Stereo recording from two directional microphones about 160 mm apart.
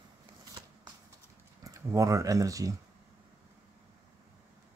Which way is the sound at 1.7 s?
20° right (ahead or behind).